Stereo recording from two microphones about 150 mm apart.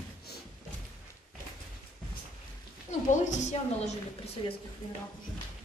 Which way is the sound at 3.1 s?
55° left (ahead or behind).